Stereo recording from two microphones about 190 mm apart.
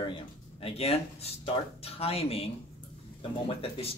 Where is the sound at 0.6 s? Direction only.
30° left (ahead or behind).